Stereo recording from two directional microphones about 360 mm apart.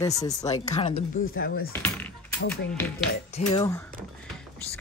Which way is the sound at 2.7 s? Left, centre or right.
Centre.